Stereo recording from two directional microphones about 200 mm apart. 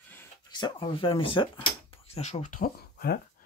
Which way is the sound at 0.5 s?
20° left (ahead or behind).